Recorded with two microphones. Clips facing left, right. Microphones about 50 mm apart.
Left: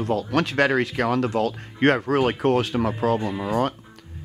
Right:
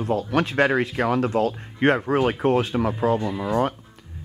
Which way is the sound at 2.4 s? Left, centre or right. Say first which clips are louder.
Even; left.